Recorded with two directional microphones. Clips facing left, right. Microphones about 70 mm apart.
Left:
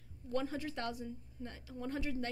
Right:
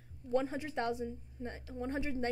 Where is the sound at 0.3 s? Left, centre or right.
Centre.